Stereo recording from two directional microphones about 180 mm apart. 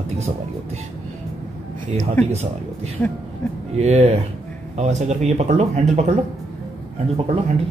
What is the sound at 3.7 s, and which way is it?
Speech, 35° right (ahead or behind).